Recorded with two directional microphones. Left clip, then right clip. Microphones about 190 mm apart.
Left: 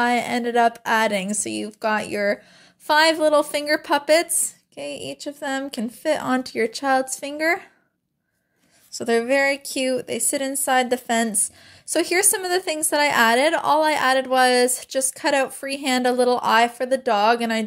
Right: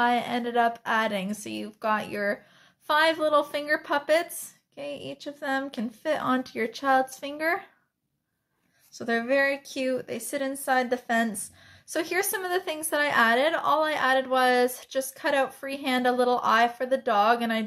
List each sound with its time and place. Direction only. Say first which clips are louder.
0.0 s speech: left 4 dB; 35° left (ahead or behind)
8.9 s speech: left 5 dB; 35° left (ahead or behind)